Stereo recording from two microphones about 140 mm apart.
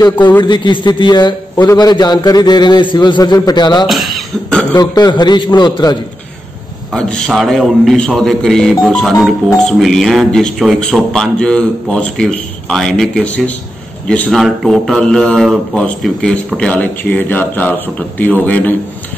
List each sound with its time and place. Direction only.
0.4 s a man's voice: 35° left (ahead or behind)
3.8 s speech: centre (ahead or behind)
4.7 s a man's voice: 30° left (ahead or behind)
6.9 s speech: 5° left (ahead or behind)